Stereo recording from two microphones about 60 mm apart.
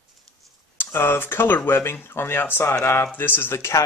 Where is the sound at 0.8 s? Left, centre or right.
Left.